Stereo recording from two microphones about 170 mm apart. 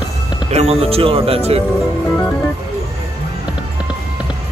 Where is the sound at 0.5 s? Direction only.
35° right (ahead or behind).